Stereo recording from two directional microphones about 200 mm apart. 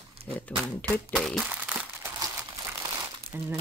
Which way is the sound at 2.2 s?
15° right (ahead or behind).